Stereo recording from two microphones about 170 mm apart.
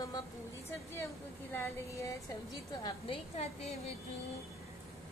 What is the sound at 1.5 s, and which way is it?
Speech, 15° left (ahead or behind).